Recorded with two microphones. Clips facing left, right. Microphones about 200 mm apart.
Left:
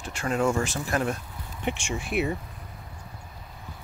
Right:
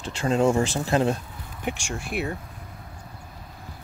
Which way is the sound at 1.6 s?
Centre (ahead or behind).